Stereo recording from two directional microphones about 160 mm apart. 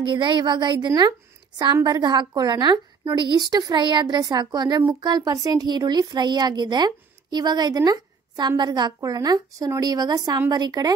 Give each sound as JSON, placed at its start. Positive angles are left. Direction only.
{"t": 0.0, "sound": "speech", "side_deg": -30}